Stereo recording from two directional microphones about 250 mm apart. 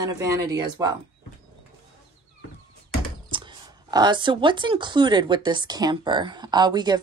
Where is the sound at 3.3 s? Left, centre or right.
Centre.